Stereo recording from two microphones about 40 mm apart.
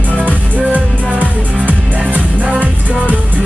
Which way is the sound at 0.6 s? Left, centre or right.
Right.